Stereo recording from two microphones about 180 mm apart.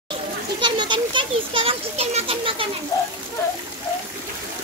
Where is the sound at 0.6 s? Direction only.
25° right (ahead or behind).